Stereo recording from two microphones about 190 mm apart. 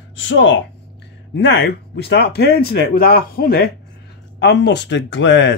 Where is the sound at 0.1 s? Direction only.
70° left (ahead or behind); by 3.7 s 50° left (ahead or behind).